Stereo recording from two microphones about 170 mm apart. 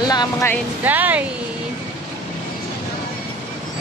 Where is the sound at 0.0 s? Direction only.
25° left (ahead or behind).